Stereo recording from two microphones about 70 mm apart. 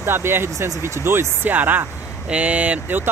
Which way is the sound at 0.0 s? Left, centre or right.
Right.